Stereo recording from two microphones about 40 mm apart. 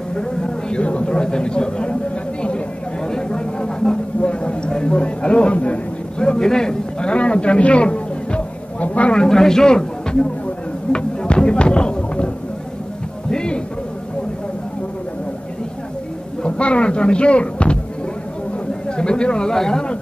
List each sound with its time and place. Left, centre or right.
0.1 s a man's voice: centre
3.1 s a sound: centre; by 9.1 s left
9.1 s speech: centre
10.9 s a sound: left
13.3 s music: centre
16.4 s speech: left
18.9 s speech: left